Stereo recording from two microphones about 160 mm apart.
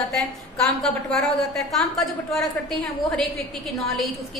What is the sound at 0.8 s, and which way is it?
A woman's voice, centre (ahead or behind).